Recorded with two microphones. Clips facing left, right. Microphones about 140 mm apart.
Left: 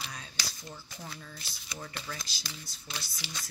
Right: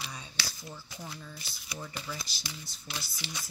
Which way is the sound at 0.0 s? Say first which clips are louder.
Right 1 dB; 5° right (ahead or behind).